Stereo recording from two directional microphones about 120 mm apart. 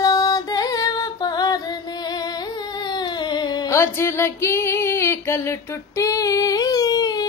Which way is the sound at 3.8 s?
20° left (ahead or behind).